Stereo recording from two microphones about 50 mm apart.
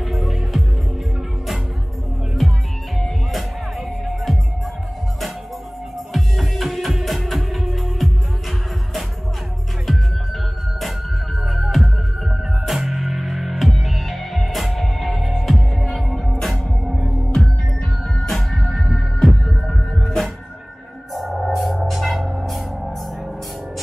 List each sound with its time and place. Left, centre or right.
0.0 s music: centre
4.0 s music: centre
6.1 s music: centre
9.8 s music: centre
17.0 s hum: centre
18.0 s music: centre